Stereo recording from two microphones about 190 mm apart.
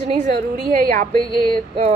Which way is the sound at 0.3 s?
50° right (ahead or behind).